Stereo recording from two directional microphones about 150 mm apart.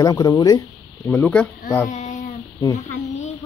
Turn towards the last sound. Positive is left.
turn(degrees=20)  # may be behind; listen again after turning